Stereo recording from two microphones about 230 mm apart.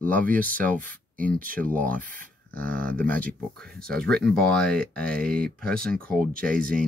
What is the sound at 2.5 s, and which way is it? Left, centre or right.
Speech, centre.